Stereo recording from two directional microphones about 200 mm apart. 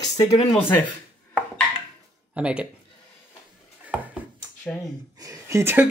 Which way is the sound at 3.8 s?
5° right (ahead or behind).